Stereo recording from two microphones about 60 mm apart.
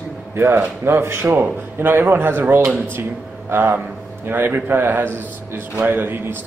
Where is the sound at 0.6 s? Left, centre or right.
Right.